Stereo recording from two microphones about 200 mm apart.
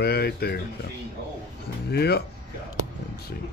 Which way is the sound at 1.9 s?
55° left (ahead or behind).